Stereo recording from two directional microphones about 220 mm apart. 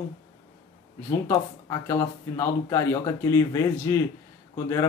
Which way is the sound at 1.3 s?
15° left (ahead or behind).